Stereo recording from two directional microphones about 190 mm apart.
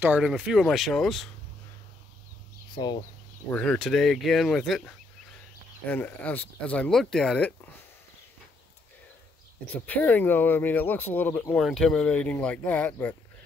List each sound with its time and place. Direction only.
0.0 s speech: 5° right (ahead or behind)
2.7 s speech: 25° left (ahead or behind)
3.4 s speech: 5° left (ahead or behind)
9.8 s speech: 10° left (ahead or behind)